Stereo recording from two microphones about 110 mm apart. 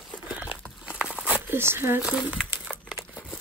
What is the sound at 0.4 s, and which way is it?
Crumpling, 10° right (ahead or behind).